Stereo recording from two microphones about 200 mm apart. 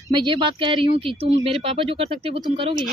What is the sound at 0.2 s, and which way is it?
Speech, 25° right (ahead or behind).